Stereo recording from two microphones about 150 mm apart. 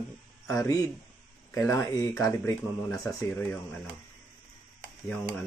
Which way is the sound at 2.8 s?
15° left (ahead or behind).